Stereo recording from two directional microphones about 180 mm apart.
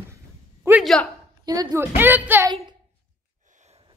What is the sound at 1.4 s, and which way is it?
A woman's voice, 20° right (ahead or behind).